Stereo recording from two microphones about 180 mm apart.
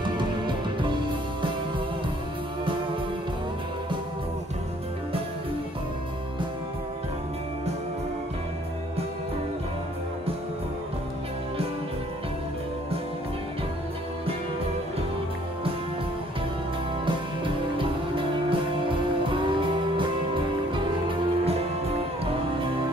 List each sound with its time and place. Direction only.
0.0 s music: 25° right (ahead or behind)
17.0 s music: 30° right (ahead or behind)